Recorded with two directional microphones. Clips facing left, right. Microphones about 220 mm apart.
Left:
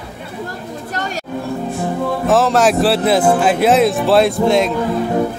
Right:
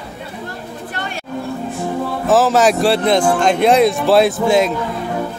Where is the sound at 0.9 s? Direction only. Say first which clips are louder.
Left 4 dB; 40° left (ahead or behind).